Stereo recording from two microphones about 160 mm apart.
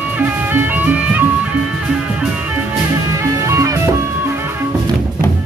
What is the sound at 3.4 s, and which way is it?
Music, 20° right (ahead or behind).